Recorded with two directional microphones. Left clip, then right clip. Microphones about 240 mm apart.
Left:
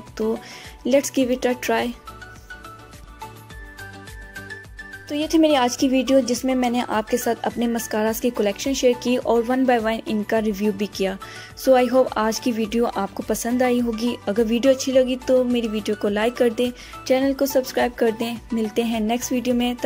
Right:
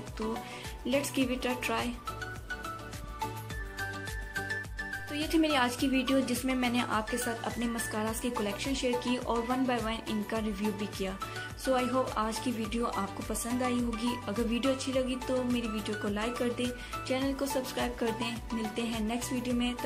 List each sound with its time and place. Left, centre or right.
0.8 s speech: left
5.1 s speech: left